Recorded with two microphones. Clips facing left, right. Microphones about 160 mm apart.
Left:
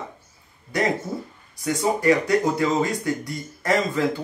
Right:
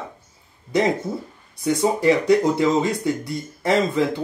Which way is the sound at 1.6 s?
25° right (ahead or behind).